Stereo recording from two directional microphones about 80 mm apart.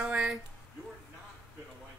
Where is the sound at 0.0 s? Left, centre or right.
Centre.